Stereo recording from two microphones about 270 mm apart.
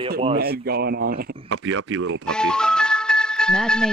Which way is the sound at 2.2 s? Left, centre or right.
Centre.